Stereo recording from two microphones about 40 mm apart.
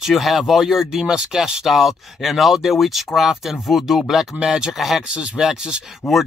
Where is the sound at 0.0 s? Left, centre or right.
Centre.